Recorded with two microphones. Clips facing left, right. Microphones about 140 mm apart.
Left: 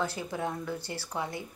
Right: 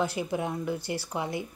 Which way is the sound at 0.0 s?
15° right (ahead or behind).